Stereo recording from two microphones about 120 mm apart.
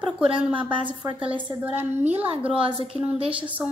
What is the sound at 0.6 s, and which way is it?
Speech, 45° right (ahead or behind).